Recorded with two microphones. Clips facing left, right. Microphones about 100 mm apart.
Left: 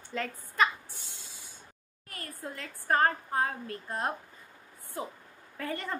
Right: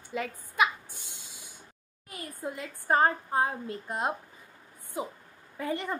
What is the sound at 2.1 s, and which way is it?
Speech, 15° right (ahead or behind).